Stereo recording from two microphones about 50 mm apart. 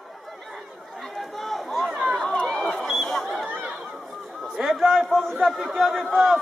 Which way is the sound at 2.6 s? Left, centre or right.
Centre.